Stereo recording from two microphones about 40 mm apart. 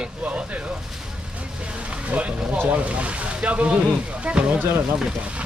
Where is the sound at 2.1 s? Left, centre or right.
Right.